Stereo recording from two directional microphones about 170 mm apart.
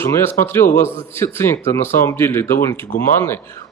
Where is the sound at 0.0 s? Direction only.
15° left (ahead or behind).